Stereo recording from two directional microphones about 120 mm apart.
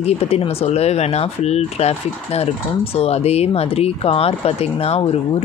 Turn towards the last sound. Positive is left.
turn(degrees=55)  # may be behind; listen again after turning